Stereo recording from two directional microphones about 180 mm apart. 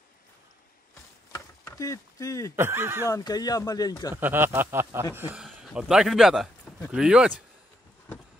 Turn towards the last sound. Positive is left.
turn(degrees=-5)  # may be behind; listen again after turning